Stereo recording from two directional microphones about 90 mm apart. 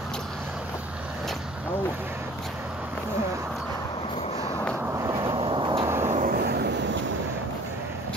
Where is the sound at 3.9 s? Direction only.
85° left.